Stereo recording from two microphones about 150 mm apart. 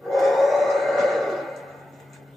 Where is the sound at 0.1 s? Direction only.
Centre (ahead or behind).